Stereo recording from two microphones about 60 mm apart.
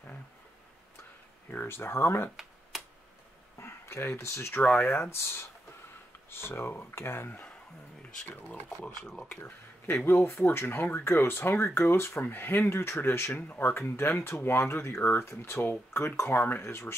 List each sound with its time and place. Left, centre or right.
1.5 s speech: left
2.7 s tick-tock: centre
3.5 s speech: left
9.0 s speech: centre
9.4 s speech: left